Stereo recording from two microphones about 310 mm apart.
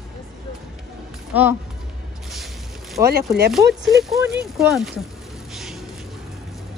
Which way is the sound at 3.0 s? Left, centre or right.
Right.